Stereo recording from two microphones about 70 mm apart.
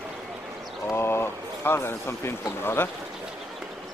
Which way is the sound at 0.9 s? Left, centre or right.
Left.